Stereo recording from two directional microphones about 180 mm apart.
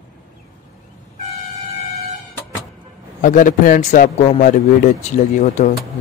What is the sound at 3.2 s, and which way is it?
A man's voice, 45° left (ahead or behind).